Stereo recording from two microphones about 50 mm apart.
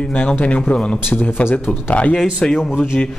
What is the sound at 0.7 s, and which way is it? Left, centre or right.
Speech, left.